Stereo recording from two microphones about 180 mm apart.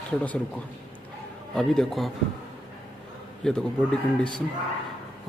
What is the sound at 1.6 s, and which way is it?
Speech, centre (ahead or behind).